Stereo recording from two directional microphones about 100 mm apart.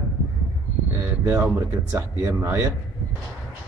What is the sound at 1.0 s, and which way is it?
A man's voice, 20° right (ahead or behind).